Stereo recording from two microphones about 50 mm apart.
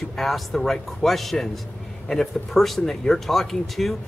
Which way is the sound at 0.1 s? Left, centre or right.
Centre.